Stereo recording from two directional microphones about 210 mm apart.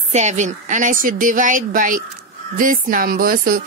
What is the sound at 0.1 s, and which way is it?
A woman's voice, 35° right (ahead or behind).